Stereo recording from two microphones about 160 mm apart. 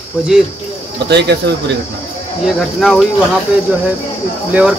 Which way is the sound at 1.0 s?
90° right.